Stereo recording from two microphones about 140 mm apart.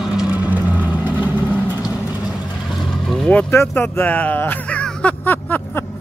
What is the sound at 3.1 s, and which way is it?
Vehicle, 5° left (ahead or behind).